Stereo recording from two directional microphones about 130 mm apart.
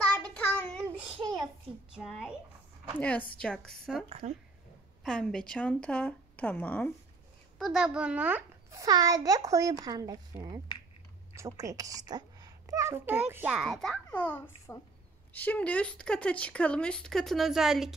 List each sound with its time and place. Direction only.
0.1 s child singing: 15° left (ahead or behind)
2.0 s a woman's voice: 5° right (ahead or behind)
3.0 s a woman's voice: 10° left (ahead or behind)
4.2 s speech: 60° right (ahead or behind)
5.0 s speech: 5° left (ahead or behind)
7.5 s a child's voice: centre (ahead or behind)
8.6 s a child's voice: 25° right (ahead or behind)
13.5 s a woman's voice: centre (ahead or behind)
14.1 s speech: 10° left (ahead or behind); by 17.9 s 5° right (ahead or behind)